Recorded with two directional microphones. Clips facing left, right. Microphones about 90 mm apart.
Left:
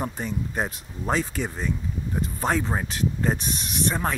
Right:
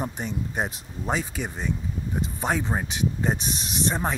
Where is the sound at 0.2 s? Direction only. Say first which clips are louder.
Left 1 dB; 20° right (ahead or behind).